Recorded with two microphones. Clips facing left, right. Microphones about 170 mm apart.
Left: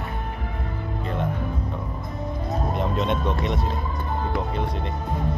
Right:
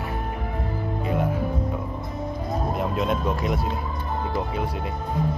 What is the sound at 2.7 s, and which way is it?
Speech, 5° right (ahead or behind).